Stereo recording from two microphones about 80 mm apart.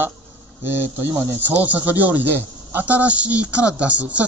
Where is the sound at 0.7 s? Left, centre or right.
Right.